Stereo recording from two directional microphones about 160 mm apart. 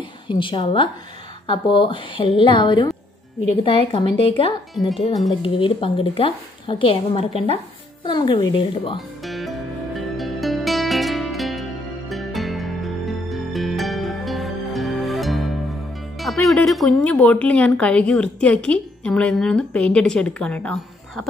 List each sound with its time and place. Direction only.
0.3 s a woman's voice: 30° left (ahead or behind)
3.9 s a woman's voice: 35° left (ahead or behind)
9.2 s music: centre (ahead or behind)